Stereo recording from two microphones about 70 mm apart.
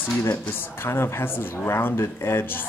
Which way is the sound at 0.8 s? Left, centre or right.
Left.